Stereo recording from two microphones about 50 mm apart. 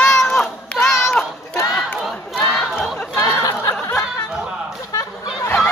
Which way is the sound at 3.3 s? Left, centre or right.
Left.